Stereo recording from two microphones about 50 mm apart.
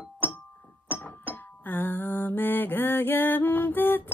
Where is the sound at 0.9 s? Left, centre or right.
Left.